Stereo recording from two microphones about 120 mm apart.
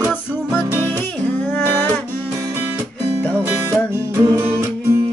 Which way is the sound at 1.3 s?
15° left (ahead or behind).